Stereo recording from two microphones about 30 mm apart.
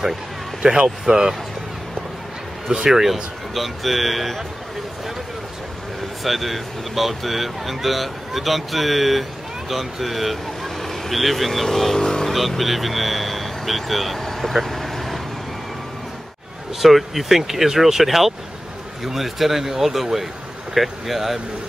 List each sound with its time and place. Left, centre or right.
0.6 s speech: right
2.9 s speech: centre
6.2 s speech: centre
12.0 s speech: left
12.3 s speech: centre
14.6 s vehicle: centre
16.8 s speech: centre